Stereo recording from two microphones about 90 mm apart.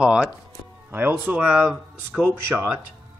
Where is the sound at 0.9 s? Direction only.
20° right (ahead or behind).